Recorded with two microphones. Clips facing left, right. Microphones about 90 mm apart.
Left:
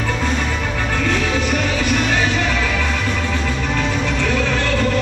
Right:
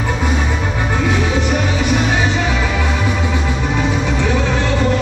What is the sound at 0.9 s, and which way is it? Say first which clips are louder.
Music: right 2 dB; 15° right (ahead or behind).